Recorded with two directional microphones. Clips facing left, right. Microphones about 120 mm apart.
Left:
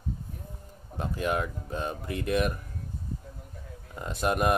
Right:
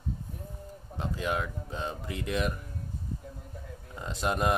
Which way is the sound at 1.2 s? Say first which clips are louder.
Left 3 dB; 20° left (ahead or behind).